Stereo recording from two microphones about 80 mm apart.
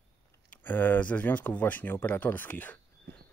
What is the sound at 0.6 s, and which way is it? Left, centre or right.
Speech, left.